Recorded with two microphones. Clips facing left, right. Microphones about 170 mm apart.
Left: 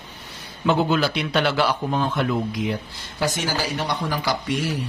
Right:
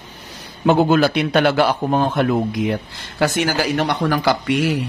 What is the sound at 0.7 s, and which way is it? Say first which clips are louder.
A man's voice: right 6 dB; 50° right (ahead or behind).